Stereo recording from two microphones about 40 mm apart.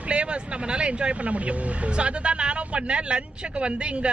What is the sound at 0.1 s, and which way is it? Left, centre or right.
Speech, right.